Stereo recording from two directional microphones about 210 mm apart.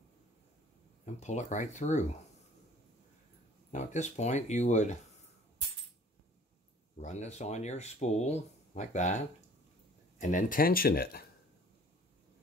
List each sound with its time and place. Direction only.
1.0 s speech: 35° left (ahead or behind)
3.7 s speech: 35° left (ahead or behind)
7.0 s speech: 35° left (ahead or behind)